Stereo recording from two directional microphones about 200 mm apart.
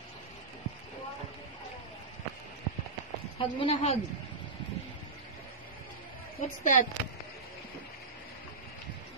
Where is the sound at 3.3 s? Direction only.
30° left (ahead or behind).